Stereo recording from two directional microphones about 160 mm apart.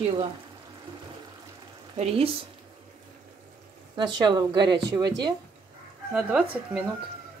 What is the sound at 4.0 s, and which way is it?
Speech, 30° right (ahead or behind).